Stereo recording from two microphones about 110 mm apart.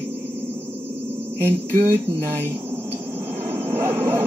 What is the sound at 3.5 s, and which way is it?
Vehicle, 20° right (ahead or behind).